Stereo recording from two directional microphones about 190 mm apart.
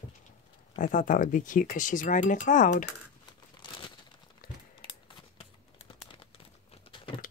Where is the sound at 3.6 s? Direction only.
25° left (ahead or behind).